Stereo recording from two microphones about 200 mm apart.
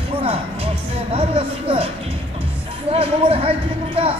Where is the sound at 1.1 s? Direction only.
30° right (ahead or behind).